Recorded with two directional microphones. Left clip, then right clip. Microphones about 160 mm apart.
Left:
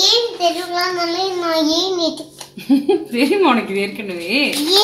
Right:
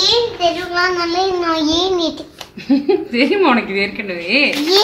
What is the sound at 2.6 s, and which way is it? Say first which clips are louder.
Speech: right 1 dB; 20° left (ahead or behind).